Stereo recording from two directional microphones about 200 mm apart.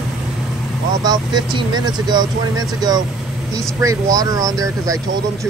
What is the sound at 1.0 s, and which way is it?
Speech, 20° right (ahead or behind).